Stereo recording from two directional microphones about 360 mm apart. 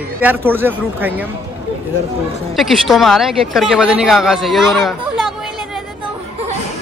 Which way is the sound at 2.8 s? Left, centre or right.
Centre.